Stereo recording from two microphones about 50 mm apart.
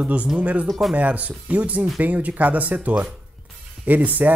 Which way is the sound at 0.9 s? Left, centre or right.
Right.